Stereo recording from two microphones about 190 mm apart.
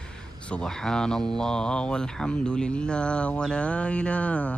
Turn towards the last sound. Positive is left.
turn(degrees=5)  # may be behind; listen again after turning